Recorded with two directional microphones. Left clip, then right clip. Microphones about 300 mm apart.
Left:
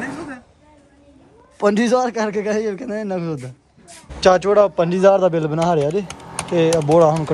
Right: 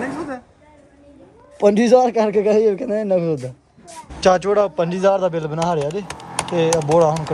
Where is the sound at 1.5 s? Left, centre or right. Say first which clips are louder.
Right 3 dB; centre.